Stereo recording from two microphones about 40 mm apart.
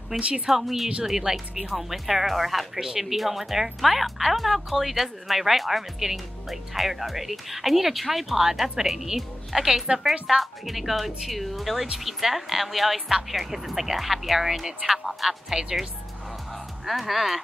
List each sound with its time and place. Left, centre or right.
0.1 s a woman's voice: right
0.5 s speech: centre
16.8 s speech: centre